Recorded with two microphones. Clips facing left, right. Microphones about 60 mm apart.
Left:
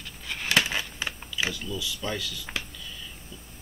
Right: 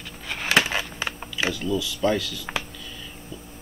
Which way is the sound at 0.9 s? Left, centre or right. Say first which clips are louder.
Right 3 dB; right.